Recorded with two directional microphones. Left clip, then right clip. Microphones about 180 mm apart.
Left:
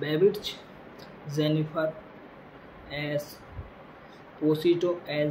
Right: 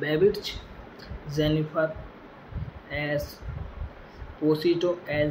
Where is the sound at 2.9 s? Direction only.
Centre (ahead or behind).